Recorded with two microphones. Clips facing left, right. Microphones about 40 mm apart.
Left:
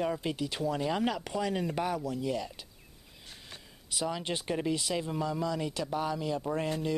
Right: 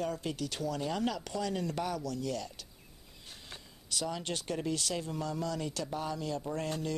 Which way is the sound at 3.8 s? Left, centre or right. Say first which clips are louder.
Left 3 dB; left.